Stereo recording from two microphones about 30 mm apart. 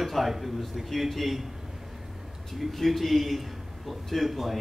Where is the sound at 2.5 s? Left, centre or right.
Centre.